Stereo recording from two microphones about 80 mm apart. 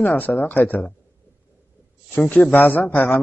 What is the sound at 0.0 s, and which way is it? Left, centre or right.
Speech, left.